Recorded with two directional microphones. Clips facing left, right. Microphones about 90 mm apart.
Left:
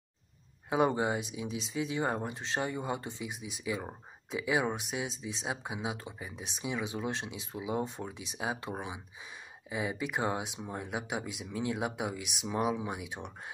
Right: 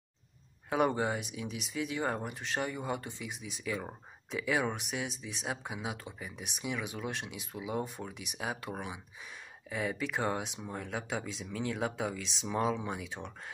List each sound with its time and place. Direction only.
0.7 s speech: 20° left (ahead or behind)